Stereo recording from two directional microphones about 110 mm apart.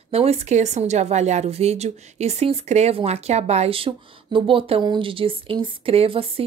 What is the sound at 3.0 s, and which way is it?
Speech, 70° right (ahead or behind).